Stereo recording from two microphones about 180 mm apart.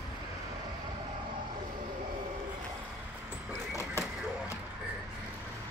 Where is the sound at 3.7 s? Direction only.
15° left (ahead or behind).